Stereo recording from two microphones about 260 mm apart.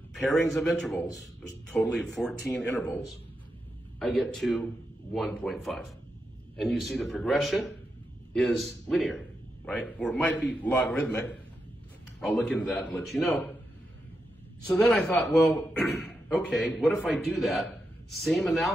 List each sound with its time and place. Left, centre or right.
0.2 s a man's voice: centre
4.0 s a man's voice: centre
14.7 s a man's voice: centre